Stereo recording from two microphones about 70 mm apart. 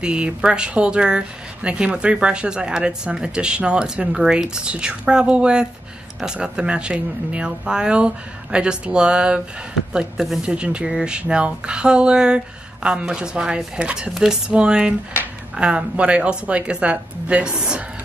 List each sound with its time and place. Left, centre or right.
0.0 s speech: centre